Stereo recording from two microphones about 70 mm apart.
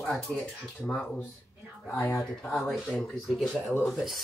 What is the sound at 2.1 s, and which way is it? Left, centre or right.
Speech, centre.